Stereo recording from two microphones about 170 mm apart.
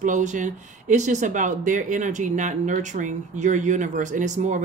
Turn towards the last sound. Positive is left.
turn(degrees=-45)  # may be behind; listen again after turning